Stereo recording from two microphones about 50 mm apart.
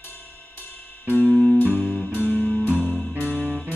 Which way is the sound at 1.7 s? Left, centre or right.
Right.